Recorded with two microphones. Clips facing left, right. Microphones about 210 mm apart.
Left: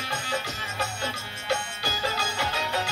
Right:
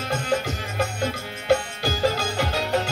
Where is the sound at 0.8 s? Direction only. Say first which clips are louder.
Right 7 dB; 50° right (ahead or behind).